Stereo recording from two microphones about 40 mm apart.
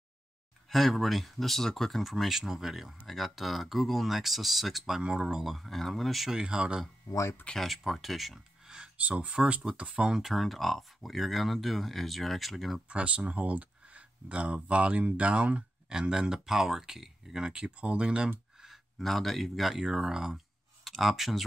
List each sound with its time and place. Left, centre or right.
0.7 s speech: centre
5.0 s speech: centre
5.5 s speech: centre
6.4 s speech: right
7.5 s speech: centre
8.6 s a sound: right
8.9 s speech: right
10.1 s speech: centre
12.8 s speech: right
15.9 s speech: centre
17.6 s speech: right
18.9 s speech: centre
19.8 s speech: centre
20.8 s speech: centre